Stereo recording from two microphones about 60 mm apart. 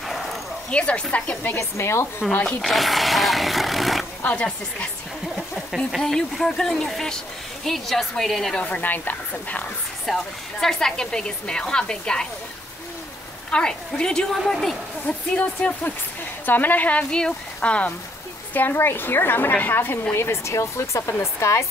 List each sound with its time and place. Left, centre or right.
0.1 s bow-wow: centre
0.7 s speech: left
1.4 s a woman's voice: left
2.6 s roaring cats: centre
4.2 s speech: left
5.3 s a sound: centre
5.9 s a woman's voice: centre
8.6 s speech: left
10.0 s a woman's voice: centre
13.5 s a woman's voice: centre
15.0 s a woman's voice: left
17.1 s speech: centre
18.5 s a woman's voice: left